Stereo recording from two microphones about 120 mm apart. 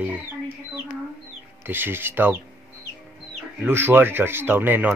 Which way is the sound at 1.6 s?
15° right (ahead or behind).